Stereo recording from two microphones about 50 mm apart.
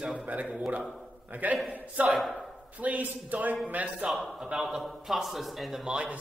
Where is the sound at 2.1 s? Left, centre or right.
Centre.